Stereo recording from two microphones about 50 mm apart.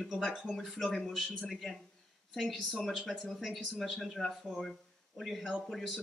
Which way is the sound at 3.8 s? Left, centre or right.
Centre.